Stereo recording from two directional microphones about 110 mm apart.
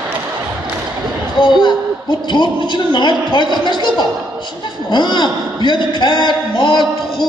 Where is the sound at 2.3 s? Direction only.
45° left (ahead or behind).